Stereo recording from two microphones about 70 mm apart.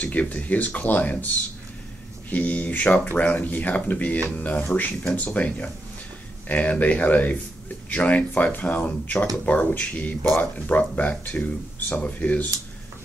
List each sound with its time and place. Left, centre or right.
0.0 s speech: left
2.3 s speech: left